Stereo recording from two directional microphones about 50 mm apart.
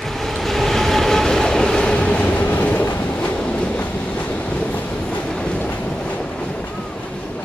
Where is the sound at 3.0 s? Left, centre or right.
Left.